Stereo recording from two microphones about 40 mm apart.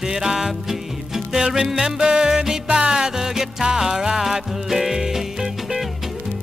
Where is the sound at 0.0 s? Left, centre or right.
Centre.